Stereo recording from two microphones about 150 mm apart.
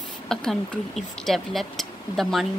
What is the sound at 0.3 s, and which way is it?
Speech, 5° left (ahead or behind).